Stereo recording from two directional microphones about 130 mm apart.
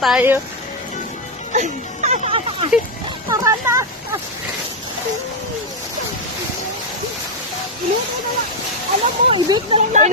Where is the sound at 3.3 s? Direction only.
20° right (ahead or behind).